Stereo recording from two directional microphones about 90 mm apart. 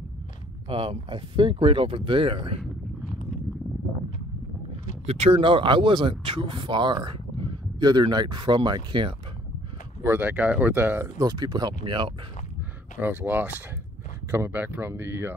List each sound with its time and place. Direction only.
0.7 s speech: 70° right (ahead or behind); by 2.6 s 85° right
5.3 s speech: 70° right (ahead or behind)
10.0 s speech: 20° right (ahead or behind)
11.1 s speech: 45° right (ahead or behind); by 12.1 s 65° right (ahead or behind)
13.0 s speech: 20° right (ahead or behind)